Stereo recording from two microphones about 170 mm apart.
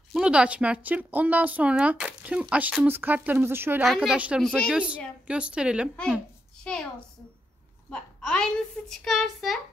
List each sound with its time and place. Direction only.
0.1 s speech: 5° right (ahead or behind)
3.8 s a woman's voice: centre (ahead or behind)
7.9 s a woman's voice: 5° left (ahead or behind)